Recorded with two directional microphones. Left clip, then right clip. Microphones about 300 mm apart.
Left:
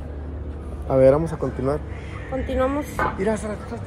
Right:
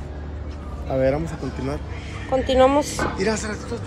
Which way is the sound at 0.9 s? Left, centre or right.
Left.